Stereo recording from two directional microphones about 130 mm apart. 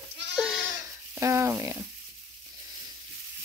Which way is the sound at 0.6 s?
20° right (ahead or behind).